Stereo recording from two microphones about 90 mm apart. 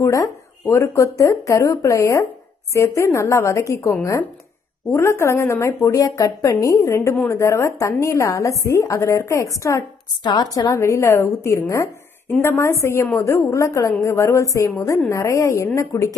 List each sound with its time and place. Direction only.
0.0 s a woman's voice: 35° left (ahead or behind)
4.9 s a woman's voice: 30° left (ahead or behind)
10.2 s a woman's voice: 50° left (ahead or behind)
12.4 s a woman's voice: 25° left (ahead or behind)